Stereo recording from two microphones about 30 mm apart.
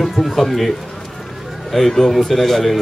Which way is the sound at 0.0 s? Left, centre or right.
Centre.